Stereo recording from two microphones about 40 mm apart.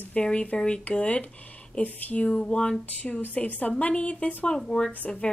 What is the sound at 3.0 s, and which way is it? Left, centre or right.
Speech, left.